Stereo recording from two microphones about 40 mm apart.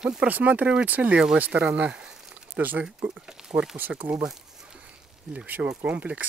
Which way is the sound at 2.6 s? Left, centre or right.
Right.